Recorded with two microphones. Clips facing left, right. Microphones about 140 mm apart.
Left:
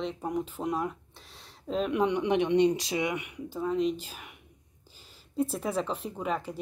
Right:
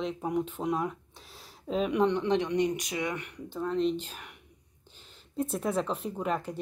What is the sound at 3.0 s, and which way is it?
A woman's voice, 10° left (ahead or behind).